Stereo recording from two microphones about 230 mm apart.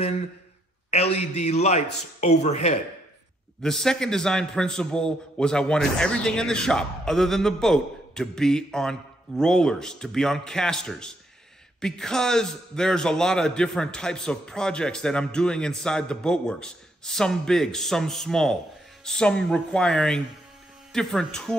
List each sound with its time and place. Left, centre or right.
0.8 s a man's voice: left
3.6 s a man's voice: centre